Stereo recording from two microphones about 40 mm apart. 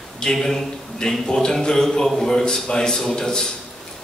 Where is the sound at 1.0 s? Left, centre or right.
Centre.